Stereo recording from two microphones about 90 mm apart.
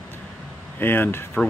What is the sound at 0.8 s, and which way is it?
Speech, 25° left (ahead or behind).